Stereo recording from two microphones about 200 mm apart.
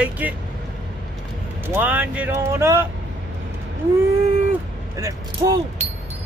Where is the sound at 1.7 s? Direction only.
10° right (ahead or behind).